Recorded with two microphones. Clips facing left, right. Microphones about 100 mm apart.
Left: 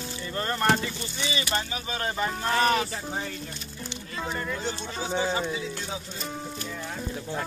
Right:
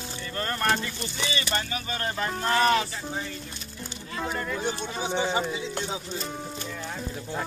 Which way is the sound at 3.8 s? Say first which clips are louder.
Right 1 dB; centre (ahead or behind).